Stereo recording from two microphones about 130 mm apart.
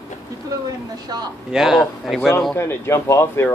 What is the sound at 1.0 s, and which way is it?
Speech, 30° right (ahead or behind).